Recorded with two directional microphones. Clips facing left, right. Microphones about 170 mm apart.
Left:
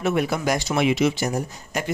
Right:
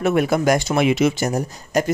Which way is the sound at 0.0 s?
50° right (ahead or behind).